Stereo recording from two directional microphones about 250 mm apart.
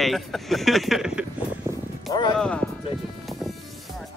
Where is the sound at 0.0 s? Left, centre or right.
Centre.